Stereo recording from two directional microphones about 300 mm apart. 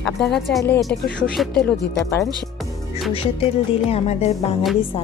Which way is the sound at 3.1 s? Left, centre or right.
Centre.